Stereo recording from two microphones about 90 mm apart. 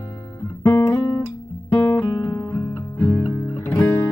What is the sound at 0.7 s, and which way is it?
Guitar, 30° left (ahead or behind).